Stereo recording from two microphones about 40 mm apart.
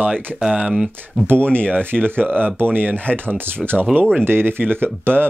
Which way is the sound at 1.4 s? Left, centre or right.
Left.